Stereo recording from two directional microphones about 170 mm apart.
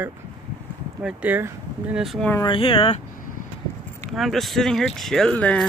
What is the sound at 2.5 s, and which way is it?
Speech, 30° left (ahead or behind).